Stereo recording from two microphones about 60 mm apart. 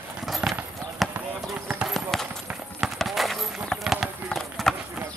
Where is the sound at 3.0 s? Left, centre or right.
Centre.